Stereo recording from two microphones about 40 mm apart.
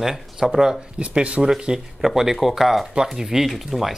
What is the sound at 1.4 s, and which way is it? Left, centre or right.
Speech, centre.